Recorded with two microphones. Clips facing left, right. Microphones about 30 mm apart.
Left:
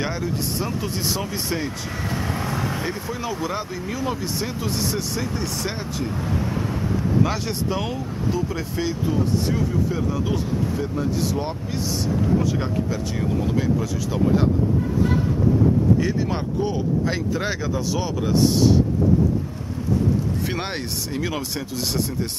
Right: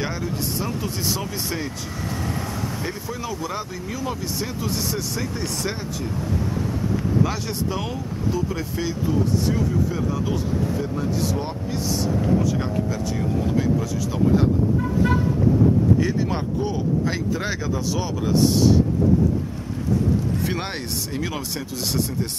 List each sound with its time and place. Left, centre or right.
0.0 s speech: centre
2.3 s vehicle: left
2.8 s speech: centre
7.2 s speech: centre
12.9 s speech: centre
16.0 s speech: centre
20.4 s speech: centre